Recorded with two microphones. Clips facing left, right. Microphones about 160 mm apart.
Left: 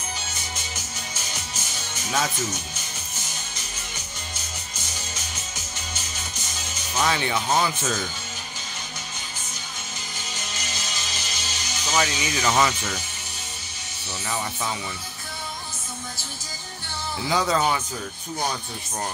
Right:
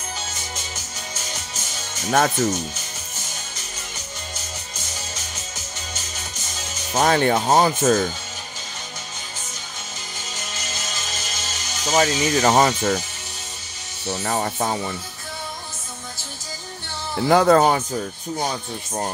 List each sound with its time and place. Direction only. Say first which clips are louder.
2.0 s speech: right 8 dB; 50° right (ahead or behind)
6.9 s speech: right 7 dB; 45° right (ahead or behind)
10.7 s music: right 2 dB; 50° right (ahead or behind)
14.0 s speech: right 7 dB; 45° right (ahead or behind)
17.2 s speech: right 8 dB; 55° right (ahead or behind)